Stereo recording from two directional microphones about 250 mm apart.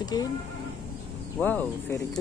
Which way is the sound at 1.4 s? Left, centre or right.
Centre.